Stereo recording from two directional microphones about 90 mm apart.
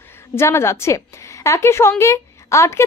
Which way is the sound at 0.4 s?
30° left (ahead or behind).